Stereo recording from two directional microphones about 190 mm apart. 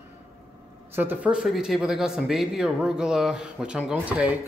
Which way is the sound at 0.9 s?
10° right (ahead or behind).